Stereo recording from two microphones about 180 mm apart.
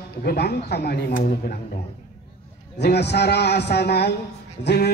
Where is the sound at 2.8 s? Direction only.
65° left (ahead or behind).